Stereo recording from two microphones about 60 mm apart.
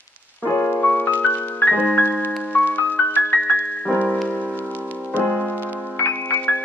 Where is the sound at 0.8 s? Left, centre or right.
Left.